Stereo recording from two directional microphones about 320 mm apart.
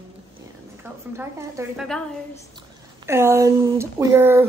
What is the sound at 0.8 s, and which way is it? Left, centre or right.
A woman's voice, centre.